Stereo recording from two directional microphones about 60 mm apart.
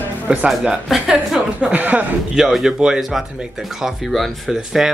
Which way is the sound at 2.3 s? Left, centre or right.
Centre.